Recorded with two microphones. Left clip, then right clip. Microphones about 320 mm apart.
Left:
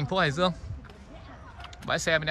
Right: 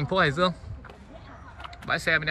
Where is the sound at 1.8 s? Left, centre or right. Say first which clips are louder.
Right 1 dB; centre.